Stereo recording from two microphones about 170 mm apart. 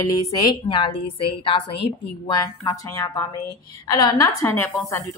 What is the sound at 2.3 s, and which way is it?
A woman's voice, 20° left (ahead or behind).